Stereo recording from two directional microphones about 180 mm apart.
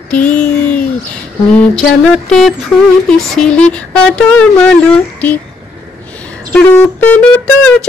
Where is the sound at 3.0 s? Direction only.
5° left (ahead or behind).